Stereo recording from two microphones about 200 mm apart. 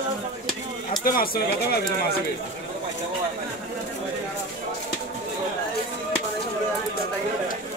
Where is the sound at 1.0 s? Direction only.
45° left (ahead or behind).